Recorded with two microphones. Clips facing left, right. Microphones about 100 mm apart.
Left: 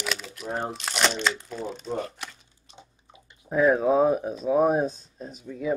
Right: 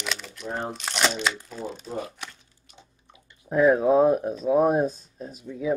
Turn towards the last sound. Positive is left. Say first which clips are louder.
# right 1 dB
turn(degrees=0)  # may be behind; listen again after turning